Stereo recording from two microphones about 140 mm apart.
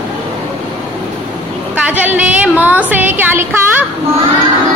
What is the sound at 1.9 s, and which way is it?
A woman's voice, 10° right (ahead or behind).